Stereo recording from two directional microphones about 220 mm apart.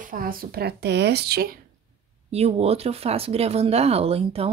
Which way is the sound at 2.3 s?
30° right (ahead or behind).